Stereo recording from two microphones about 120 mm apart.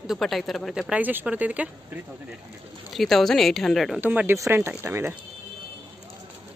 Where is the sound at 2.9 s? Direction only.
Centre (ahead or behind).